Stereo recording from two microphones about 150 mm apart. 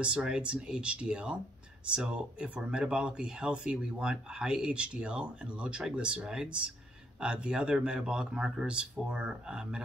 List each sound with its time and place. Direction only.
0.0 s speech: 5° right (ahead or behind)